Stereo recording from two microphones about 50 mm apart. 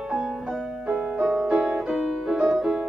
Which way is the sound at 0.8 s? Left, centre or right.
Right.